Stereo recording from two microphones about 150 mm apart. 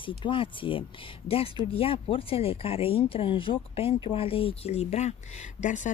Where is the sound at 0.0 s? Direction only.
35° left (ahead or behind).